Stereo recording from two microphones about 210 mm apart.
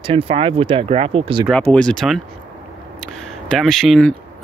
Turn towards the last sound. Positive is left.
turn(degrees=5)  # may be behind; listen again after turning